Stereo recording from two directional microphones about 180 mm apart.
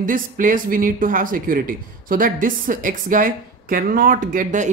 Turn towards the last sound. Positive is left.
turn(degrees=-45)  # may be behind; listen again after turning